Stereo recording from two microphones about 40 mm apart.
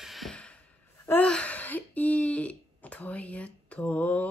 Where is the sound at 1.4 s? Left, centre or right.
Left.